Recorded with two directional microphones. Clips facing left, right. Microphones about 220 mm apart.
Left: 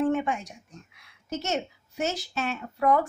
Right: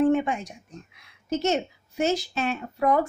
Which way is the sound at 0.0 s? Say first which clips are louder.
Right 4 dB; 20° right (ahead or behind).